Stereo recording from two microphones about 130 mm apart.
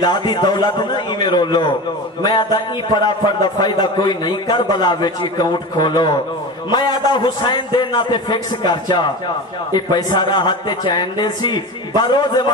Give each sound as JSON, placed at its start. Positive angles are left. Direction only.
{"t": 0.0, "sound": "a man's voice", "side_deg": 35}